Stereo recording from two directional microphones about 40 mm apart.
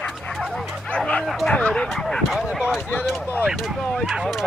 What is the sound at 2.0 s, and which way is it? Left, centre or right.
Speech, centre.